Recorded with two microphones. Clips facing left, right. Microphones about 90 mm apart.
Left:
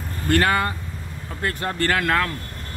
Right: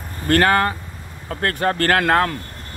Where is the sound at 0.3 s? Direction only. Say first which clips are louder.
Right 4 dB; 50° right (ahead or behind).